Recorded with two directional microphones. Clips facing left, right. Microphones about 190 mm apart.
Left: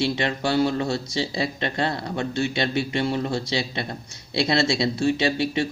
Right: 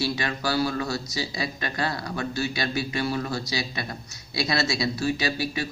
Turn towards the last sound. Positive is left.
turn(degrees=25)  # may be behind; listen again after turning